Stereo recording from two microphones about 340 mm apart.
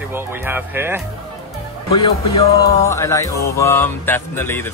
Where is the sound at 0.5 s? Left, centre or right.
Centre.